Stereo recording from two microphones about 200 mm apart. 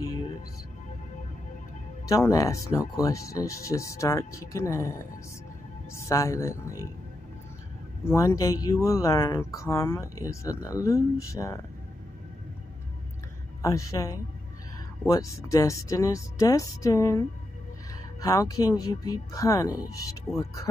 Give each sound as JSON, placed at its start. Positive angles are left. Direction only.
{"t": 2.0, "sound": "speech", "side_deg": 15}
{"t": 8.0, "sound": "speech", "side_deg": 10}
{"t": 13.6, "sound": "speech", "side_deg": 15}
{"t": 18.2, "sound": "speech", "side_deg": 15}